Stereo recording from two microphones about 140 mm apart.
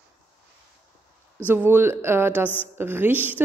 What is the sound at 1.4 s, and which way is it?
Speech, 15° right (ahead or behind).